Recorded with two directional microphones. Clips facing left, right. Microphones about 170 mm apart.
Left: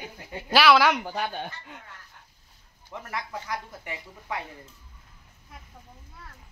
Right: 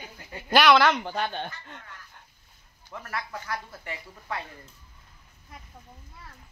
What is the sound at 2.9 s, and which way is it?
Speech, 15° left (ahead or behind).